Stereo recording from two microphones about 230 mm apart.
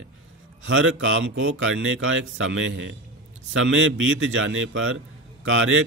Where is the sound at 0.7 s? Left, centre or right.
Right.